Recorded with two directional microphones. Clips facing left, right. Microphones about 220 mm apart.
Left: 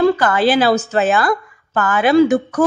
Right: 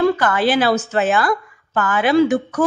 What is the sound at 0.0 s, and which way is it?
A woman's voice, 35° left (ahead or behind).